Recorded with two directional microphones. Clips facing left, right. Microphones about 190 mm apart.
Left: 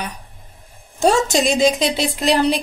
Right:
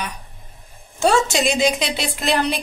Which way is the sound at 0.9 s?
40° left (ahead or behind).